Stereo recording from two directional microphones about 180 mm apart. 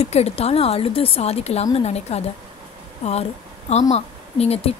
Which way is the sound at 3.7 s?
40° left (ahead or behind).